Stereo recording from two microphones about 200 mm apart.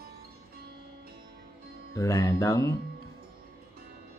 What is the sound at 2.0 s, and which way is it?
Speech, 15° left (ahead or behind).